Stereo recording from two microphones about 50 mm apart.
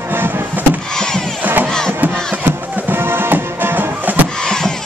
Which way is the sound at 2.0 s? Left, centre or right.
Right.